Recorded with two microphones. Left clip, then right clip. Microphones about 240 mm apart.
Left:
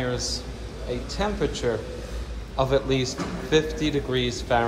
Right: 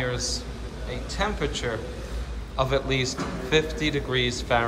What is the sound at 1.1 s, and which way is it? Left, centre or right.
A man's voice, left.